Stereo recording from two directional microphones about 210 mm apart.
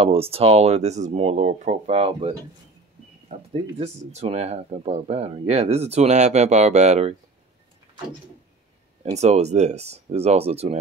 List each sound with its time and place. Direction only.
0.0 s speech: 25° right (ahead or behind)
3.3 s a sound: 30° right (ahead or behind)
3.8 s speech: 30° right (ahead or behind)
9.1 s speech: 30° right (ahead or behind)